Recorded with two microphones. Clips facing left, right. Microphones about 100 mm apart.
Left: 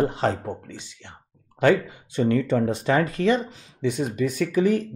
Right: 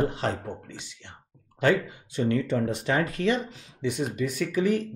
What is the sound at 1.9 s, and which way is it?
Speech, 45° left (ahead or behind).